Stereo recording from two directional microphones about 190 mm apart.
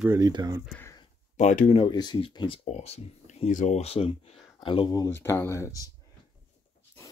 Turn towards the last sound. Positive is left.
turn(degrees=20)  # may be behind; listen again after turning